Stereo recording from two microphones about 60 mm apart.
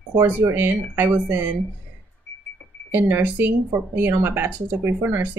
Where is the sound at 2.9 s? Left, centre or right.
Right.